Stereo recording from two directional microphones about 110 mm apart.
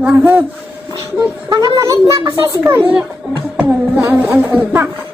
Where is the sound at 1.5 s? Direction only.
35° right (ahead or behind).